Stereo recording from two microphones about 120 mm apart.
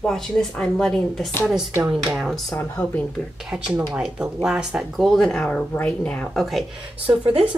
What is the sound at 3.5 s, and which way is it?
Speech, 5° right (ahead or behind).